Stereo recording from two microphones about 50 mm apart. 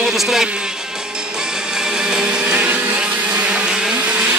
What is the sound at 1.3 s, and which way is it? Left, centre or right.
Music, centre.